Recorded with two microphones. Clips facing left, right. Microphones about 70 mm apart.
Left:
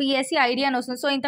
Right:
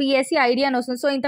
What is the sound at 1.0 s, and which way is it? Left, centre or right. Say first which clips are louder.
Speech: right 3 dB; right.